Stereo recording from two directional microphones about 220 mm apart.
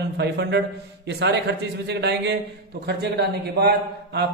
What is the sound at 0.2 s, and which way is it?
Speech, 50° right (ahead or behind).